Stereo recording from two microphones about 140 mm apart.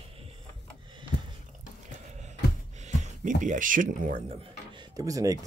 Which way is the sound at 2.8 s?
60° right (ahead or behind).